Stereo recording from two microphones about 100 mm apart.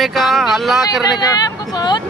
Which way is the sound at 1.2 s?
45° left (ahead or behind).